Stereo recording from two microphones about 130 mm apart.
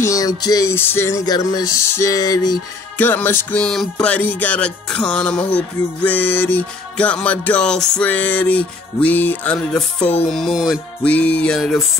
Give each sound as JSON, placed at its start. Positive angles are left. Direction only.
{"t": 0.0, "sound": "music", "side_deg": 25}
{"t": 3.0, "sound": "music", "side_deg": 15}
{"t": 11.0, "sound": "music", "side_deg": 10}